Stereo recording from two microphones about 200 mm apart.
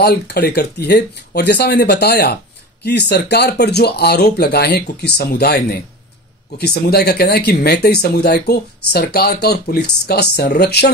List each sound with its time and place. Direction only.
0.0 s speech: 55° left (ahead or behind)